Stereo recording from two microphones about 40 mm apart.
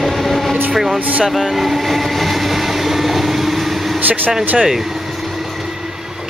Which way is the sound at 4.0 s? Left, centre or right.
Right.